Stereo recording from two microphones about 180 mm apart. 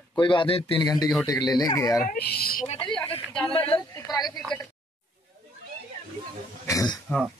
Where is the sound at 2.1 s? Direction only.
60° left (ahead or behind).